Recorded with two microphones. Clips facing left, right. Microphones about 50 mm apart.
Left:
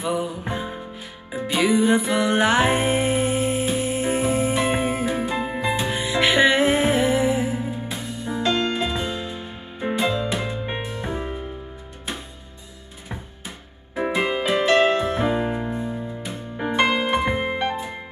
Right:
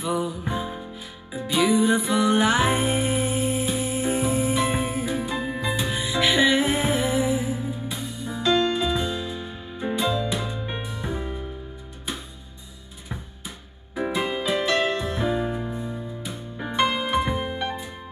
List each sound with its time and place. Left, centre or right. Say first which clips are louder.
0.0 s music: left 1 dB; left
1.3 s music: left 1 dB; left
13.9 s music: left 3 dB; left
16.8 s music: left 2 dB; left